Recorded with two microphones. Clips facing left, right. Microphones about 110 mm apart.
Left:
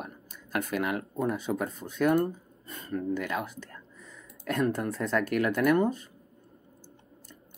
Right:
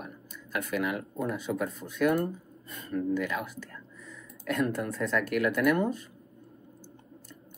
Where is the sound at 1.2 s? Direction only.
30° left (ahead or behind).